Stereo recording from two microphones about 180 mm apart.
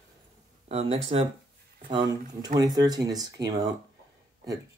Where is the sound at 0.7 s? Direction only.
35° right (ahead or behind).